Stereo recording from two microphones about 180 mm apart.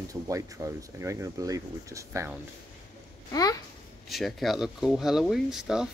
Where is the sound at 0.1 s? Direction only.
20° right (ahead or behind).